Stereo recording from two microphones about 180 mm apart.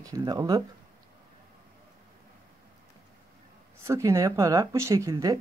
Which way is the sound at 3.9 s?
15° right (ahead or behind).